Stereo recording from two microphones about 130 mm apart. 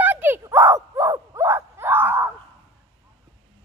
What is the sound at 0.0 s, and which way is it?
Dog, 15° right (ahead or behind).